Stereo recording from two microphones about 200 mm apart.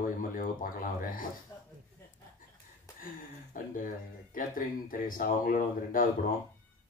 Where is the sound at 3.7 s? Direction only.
45° left (ahead or behind).